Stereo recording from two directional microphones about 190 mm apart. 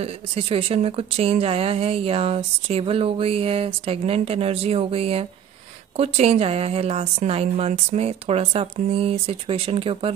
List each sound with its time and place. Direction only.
0.0 s speech: 30° right (ahead or behind)